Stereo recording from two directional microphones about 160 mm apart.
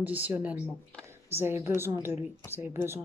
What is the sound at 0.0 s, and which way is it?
Speech, 10° right (ahead or behind).